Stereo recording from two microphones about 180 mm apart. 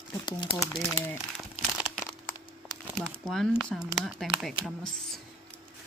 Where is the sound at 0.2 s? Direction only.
25° left (ahead or behind).